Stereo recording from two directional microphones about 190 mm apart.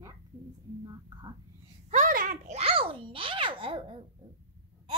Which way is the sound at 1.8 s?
40° right (ahead or behind).